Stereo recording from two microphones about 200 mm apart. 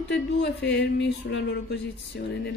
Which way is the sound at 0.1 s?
55° left (ahead or behind).